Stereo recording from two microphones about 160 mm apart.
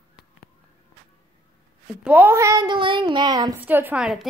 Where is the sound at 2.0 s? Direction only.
10° right (ahead or behind).